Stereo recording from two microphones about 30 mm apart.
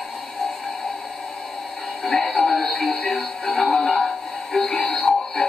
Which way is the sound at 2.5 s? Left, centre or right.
Centre.